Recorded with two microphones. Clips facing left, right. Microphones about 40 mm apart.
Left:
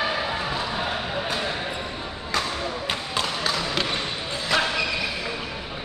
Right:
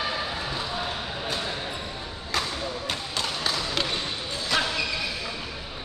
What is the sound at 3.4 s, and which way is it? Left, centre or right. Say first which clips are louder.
Basketball bounce: left 2 dB; centre.